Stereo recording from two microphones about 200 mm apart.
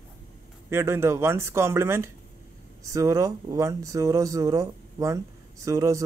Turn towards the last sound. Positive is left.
turn(degrees=-15)  # may be behind; listen again after turning